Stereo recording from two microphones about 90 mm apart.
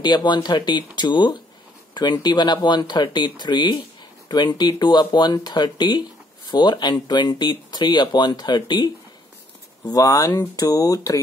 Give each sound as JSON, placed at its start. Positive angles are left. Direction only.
{"t": 0.0, "sound": "speech", "side_deg": 55}
{"t": 9.8, "sound": "speech", "side_deg": 45}